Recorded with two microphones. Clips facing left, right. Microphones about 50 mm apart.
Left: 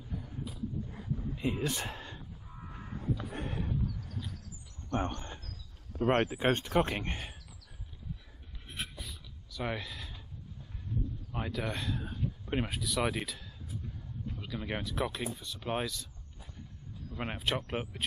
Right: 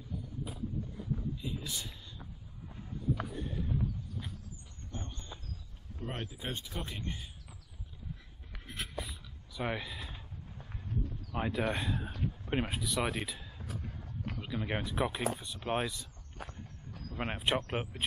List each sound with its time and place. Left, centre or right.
0.9 s a sound: left
2.8 s a sound: left
3.3 s horse: left
4.8 s speech: left
6.2 s speech: left
6.7 s speech: left
9.0 s a sound: centre
11.3 s speech: centre
12.4 s speech: centre
13.7 s a sound: right
14.4 s speech: centre
16.4 s walk: right
17.2 s speech: centre